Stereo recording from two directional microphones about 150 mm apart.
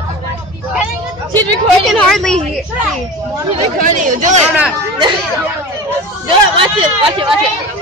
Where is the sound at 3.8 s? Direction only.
60° right (ahead or behind).